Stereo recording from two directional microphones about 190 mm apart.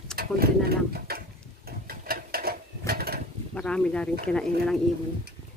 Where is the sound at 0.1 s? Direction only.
55° right (ahead or behind).